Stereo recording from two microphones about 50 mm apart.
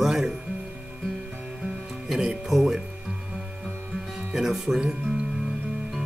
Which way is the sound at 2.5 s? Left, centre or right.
Centre.